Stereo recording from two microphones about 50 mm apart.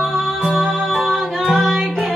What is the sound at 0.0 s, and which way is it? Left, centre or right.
Music, centre.